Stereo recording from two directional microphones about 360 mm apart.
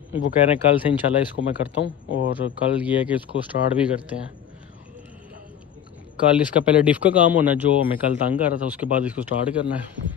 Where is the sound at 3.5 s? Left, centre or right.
Left.